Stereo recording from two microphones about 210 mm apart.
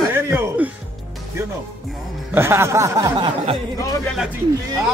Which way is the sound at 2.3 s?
10° right (ahead or behind).